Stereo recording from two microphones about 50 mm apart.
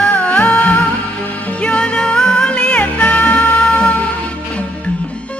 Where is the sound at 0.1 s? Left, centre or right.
Left.